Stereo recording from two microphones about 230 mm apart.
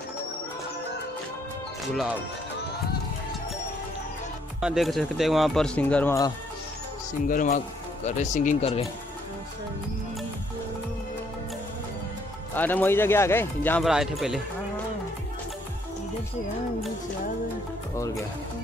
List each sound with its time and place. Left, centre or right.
4.6 s speech: centre
7.2 s speech: left
12.5 s speech: centre